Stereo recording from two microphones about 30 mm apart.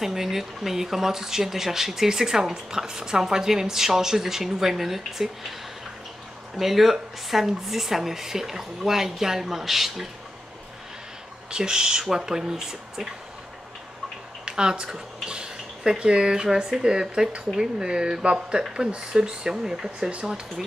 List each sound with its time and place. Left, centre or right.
0.0 s speech: centre
6.5 s speech: centre
11.5 s speech: right
14.5 s speech: right